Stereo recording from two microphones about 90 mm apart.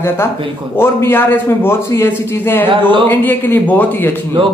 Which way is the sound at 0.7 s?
25° left (ahead or behind).